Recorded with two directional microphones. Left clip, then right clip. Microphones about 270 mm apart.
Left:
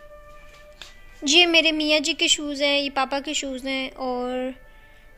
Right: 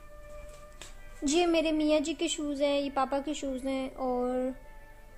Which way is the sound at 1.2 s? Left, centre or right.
Centre.